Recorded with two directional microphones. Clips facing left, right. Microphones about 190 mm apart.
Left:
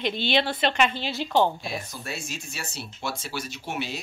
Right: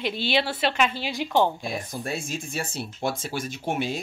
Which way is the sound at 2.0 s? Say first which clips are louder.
Right 5 dB; 50° right (ahead or behind).